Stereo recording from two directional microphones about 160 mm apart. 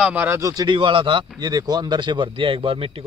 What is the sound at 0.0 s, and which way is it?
A man's voice, 10° right (ahead or behind).